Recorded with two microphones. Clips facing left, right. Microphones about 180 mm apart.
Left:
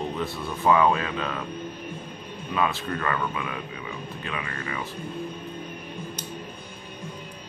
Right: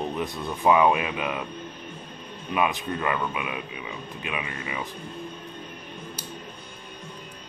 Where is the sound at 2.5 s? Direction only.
15° right (ahead or behind).